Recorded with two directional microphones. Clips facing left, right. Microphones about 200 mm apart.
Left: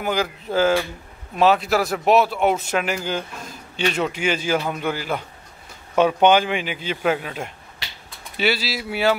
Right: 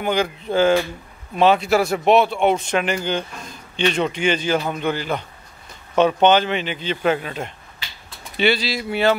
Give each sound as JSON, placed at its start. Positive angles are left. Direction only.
{"t": 0.0, "sound": "speech", "side_deg": 5}